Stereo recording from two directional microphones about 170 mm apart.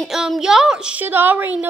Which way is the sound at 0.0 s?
Centre (ahead or behind).